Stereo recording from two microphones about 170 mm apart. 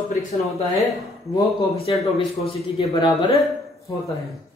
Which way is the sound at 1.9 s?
30° left (ahead or behind).